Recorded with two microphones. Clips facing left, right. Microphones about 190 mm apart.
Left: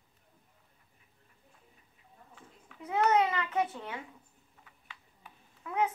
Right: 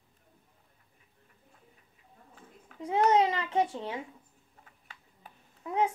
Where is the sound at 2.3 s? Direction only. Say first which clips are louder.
Right 5 dB; 35° right (ahead or behind).